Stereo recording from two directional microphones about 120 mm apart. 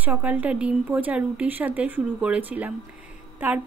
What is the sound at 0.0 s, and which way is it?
A woman's voice, 15° right (ahead or behind).